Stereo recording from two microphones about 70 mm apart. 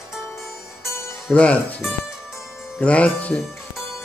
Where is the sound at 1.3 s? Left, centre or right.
Centre.